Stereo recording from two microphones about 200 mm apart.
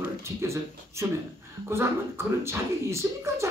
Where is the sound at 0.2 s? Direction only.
15° right (ahead or behind).